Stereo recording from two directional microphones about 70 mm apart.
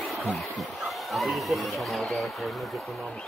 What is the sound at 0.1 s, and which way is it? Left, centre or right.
Speech, centre.